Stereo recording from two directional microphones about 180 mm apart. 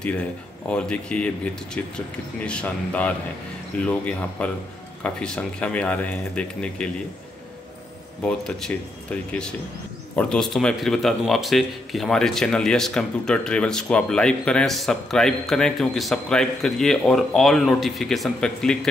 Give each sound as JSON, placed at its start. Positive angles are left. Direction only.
{"t": 0.0, "sound": "speech", "side_deg": 5}
{"t": 8.3, "sound": "speech", "side_deg": 5}